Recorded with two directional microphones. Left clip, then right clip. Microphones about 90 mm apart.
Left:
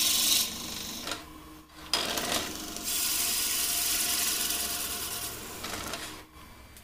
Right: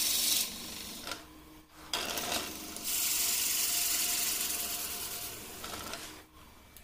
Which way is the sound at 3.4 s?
10° right (ahead or behind).